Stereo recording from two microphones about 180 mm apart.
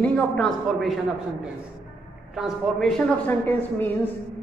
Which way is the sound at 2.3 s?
Centre (ahead or behind).